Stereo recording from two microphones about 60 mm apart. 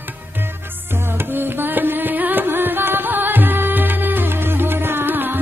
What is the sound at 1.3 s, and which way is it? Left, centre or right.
Music, right.